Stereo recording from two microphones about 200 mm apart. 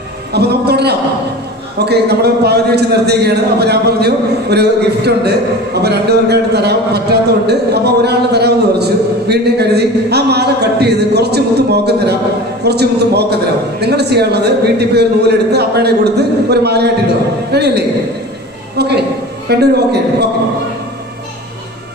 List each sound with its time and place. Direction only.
0.3 s a man's voice: 55° right (ahead or behind)